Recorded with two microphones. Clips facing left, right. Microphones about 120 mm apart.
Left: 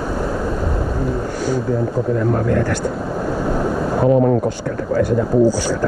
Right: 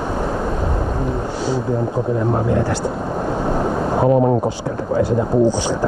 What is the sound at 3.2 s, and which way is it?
Vehicle, 20° right (ahead or behind).